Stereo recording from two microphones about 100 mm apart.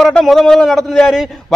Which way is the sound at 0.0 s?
5° left (ahead or behind).